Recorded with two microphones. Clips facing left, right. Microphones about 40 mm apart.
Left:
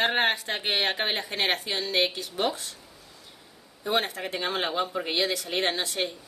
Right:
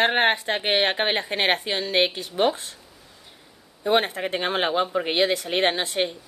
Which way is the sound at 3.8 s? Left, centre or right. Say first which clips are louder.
Right 6 dB; right.